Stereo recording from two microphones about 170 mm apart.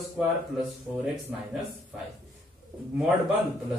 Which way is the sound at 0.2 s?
Centre (ahead or behind).